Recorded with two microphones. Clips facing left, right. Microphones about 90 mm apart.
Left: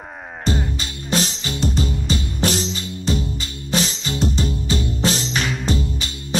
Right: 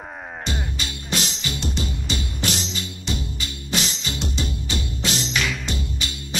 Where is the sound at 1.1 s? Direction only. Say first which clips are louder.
Left 5 dB; 40° left (ahead or behind).